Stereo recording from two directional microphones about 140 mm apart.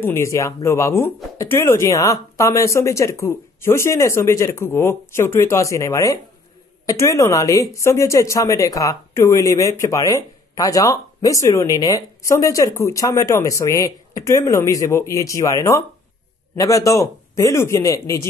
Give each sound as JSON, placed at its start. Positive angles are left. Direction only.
{"t": 0.0, "sound": "speech", "side_deg": 20}